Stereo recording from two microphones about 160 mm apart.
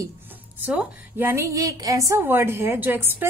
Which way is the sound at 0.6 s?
10° right (ahead or behind).